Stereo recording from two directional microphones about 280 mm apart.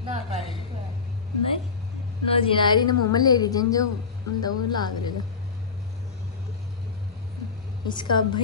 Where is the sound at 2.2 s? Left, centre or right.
Centre.